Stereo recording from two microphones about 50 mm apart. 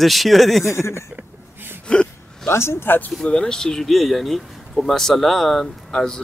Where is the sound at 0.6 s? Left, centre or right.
Left.